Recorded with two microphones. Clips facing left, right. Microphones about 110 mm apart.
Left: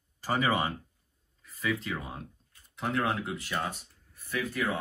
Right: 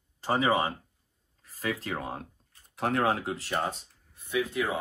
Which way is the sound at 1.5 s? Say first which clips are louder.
Even; 35° right (ahead or behind).